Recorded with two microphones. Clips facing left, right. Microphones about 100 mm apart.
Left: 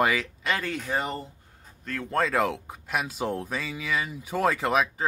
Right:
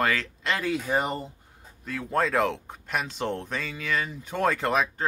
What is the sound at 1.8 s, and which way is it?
Speech, 5° right (ahead or behind).